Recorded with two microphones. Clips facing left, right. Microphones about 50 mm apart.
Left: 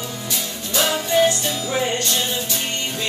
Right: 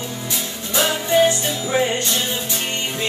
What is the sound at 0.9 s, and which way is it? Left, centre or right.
Music, centre.